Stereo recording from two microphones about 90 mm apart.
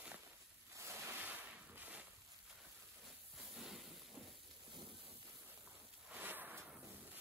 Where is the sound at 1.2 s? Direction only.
20° right (ahead or behind).